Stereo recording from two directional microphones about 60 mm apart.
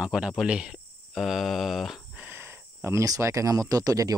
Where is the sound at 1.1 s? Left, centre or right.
Centre.